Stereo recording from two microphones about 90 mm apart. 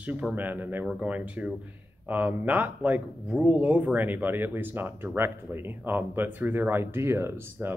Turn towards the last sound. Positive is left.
turn(degrees=-25)  # may be behind; listen again after turning